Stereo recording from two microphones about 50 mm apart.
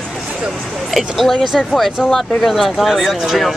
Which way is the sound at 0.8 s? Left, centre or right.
Centre.